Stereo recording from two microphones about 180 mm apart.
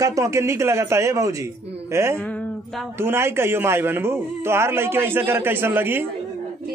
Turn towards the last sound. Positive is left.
turn(degrees=-10)  # may be behind; listen again after turning